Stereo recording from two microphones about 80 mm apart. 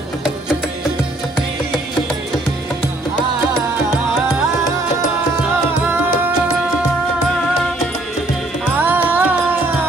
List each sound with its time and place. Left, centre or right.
8.7 s music: right